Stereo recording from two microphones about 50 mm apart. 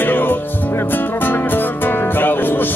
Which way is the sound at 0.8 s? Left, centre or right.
Left.